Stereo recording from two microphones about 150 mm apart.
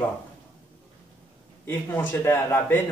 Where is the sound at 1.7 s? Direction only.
15° left (ahead or behind).